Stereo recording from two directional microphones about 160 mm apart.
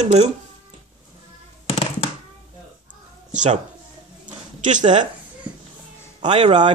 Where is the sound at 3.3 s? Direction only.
50° right (ahead or behind).